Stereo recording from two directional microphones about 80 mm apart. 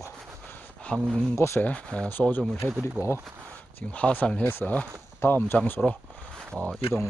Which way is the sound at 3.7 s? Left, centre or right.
Centre.